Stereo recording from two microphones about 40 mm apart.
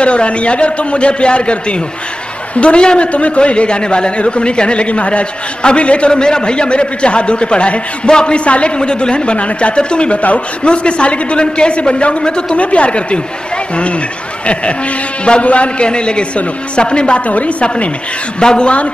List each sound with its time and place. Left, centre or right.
0.0 s a man's voice: left
14.4 s a man's voice: left
17.3 s speech: left
18.4 s a man's voice: centre